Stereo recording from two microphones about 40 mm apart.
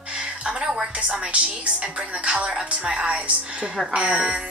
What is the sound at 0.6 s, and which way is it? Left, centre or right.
A woman's voice, right.